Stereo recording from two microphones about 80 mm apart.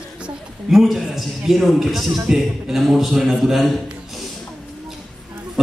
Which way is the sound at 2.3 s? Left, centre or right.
Centre.